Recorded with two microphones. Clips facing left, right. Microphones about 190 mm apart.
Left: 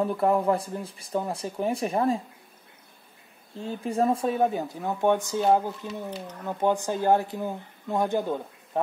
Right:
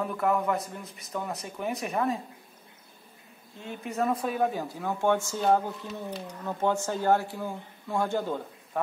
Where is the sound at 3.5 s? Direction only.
30° left (ahead or behind); by 8.8 s 15° left (ahead or behind).